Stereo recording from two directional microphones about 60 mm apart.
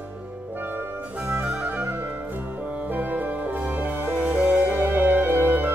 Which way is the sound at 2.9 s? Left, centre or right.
Right.